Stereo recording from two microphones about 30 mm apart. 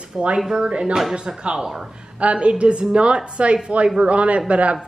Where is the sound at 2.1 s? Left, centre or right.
Right.